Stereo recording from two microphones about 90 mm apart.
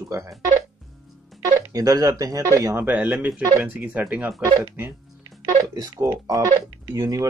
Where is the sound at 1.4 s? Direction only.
40° right (ahead or behind).